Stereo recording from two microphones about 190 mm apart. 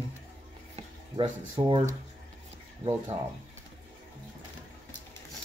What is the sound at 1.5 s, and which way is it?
Speech, 25° right (ahead or behind).